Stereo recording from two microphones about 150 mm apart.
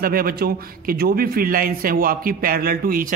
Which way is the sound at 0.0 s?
80° right.